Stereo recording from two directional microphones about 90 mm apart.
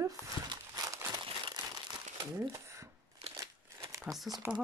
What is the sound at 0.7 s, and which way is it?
Crumpling, 40° right (ahead or behind).